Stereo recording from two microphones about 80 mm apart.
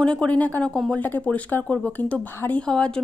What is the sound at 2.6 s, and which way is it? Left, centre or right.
Speech, centre.